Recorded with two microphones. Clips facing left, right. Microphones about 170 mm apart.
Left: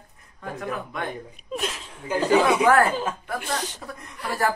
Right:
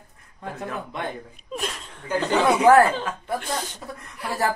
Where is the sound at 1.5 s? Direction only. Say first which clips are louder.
Left 1 dB; centre (ahead or behind).